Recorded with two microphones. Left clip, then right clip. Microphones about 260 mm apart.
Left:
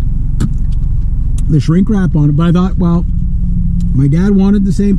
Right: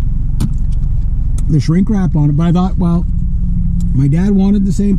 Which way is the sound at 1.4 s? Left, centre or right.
Left.